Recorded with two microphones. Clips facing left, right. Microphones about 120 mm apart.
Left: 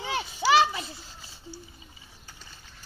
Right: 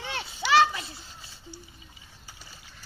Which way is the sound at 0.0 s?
20° left (ahead or behind).